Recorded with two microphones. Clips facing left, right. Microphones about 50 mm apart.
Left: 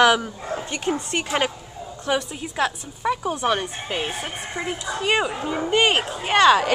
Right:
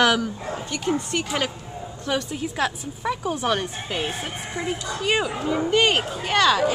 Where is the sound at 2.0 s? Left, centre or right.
Centre.